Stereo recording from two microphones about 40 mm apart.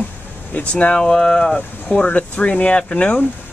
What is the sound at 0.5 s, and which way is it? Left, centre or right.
Speech, left.